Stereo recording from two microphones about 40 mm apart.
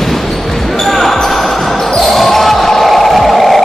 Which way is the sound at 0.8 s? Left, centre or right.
Centre.